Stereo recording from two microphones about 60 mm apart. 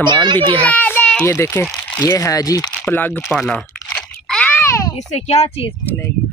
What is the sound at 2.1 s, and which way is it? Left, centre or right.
Speech, left.